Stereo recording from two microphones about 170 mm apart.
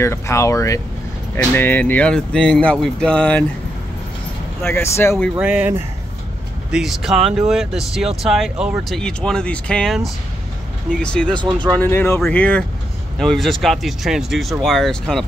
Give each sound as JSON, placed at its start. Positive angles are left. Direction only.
{"t": 0.0, "sound": "speech", "side_deg": 15}
{"t": 4.6, "sound": "speech", "side_deg": 15}
{"t": 5.4, "sound": "speech", "side_deg": -10}